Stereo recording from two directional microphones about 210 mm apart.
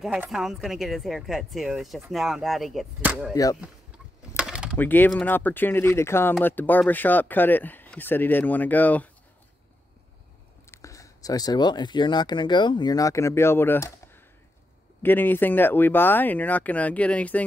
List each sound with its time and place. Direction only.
0.0 s speech: centre (ahead or behind)
4.4 s a sound: 5° right (ahead or behind)
4.7 s speech: 10° left (ahead or behind)
10.7 s speech: 15° left (ahead or behind)